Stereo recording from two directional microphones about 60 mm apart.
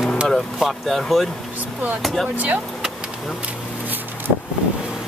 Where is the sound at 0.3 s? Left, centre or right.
Centre.